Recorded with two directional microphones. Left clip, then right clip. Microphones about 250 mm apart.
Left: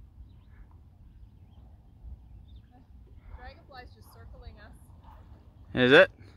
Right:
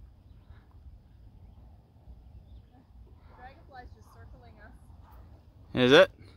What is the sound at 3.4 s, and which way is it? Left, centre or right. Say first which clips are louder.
Vehicle: left 1 dB; left.